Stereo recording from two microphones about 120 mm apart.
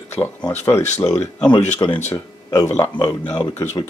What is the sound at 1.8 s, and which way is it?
Speech, 30° left (ahead or behind).